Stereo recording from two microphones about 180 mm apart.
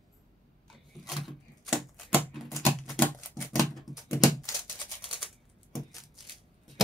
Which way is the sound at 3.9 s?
15° left (ahead or behind).